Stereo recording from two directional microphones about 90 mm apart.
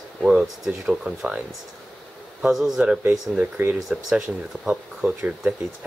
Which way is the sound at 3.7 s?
5° right (ahead or behind).